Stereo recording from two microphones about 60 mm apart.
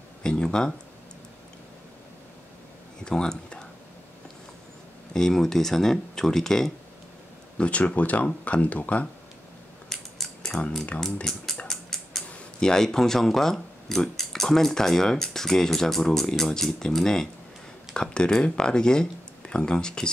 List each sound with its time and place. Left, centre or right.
0.2 s speech: centre
3.0 s speech: centre
5.1 s speech: centre
7.5 s speech: left
9.8 s mechanisms: centre
11.3 s speech: centre
11.6 s a sound: centre
12.3 s speech: centre